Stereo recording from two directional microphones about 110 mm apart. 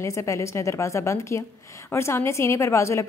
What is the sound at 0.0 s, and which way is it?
A woman's voice, 25° left (ahead or behind).